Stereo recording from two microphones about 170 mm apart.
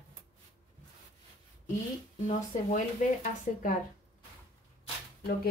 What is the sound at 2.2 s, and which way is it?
Speech, 45° left (ahead or behind).